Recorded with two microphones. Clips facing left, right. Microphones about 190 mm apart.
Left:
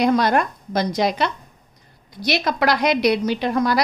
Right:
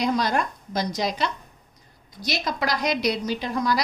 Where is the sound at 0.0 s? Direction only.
60° left (ahead or behind).